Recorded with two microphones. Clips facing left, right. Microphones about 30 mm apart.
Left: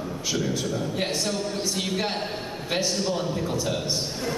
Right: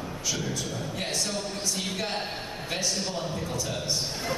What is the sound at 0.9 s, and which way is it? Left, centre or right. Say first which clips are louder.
Speech: left 4 dB; centre.